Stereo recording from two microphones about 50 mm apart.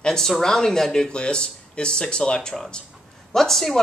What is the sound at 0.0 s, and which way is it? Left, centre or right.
Speech, centre.